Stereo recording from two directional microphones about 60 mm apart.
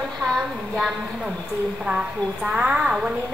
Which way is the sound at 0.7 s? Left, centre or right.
Centre.